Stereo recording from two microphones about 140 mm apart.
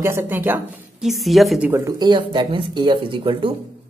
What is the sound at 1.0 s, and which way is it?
Speech, centre (ahead or behind).